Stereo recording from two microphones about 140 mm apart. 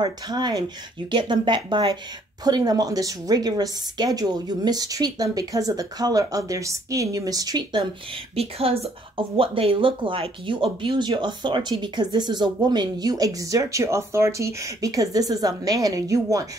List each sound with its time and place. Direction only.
0.0 s a woman's voice: 30° right (ahead or behind)
8.4 s a woman's voice: 45° right (ahead or behind); by 16.4 s 25° right (ahead or behind)